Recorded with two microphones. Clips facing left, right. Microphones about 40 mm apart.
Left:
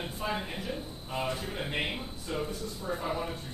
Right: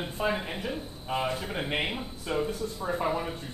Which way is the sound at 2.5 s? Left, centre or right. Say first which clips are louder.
Right 4 dB; right.